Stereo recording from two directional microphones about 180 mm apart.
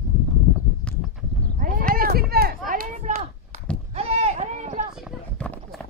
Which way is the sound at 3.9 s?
35° right (ahead or behind).